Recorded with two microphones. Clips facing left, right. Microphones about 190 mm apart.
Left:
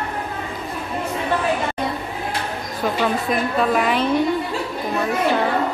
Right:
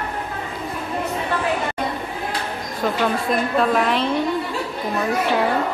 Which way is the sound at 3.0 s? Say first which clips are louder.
Even; 5° left (ahead or behind).